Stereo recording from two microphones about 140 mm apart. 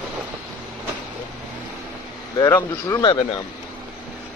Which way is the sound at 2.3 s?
30° left (ahead or behind).